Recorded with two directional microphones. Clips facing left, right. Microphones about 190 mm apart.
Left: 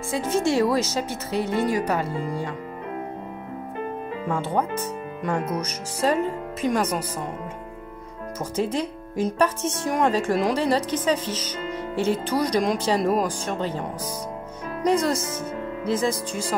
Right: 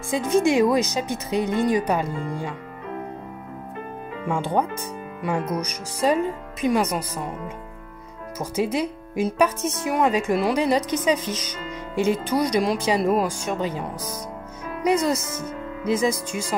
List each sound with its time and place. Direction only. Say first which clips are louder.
0.1 s speech: right 3 dB; 15° right (ahead or behind)
4.3 s speech: right 2 dB; 15° right (ahead or behind)
8.4 s speech: right 2 dB; 10° right (ahead or behind)